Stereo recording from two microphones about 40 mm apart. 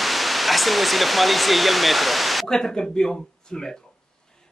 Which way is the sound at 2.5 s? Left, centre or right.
Centre.